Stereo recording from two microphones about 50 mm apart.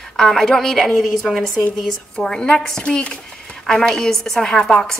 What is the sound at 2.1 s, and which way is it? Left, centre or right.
A woman's voice, centre.